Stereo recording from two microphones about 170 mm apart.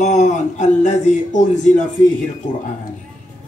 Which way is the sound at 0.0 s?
45° left (ahead or behind).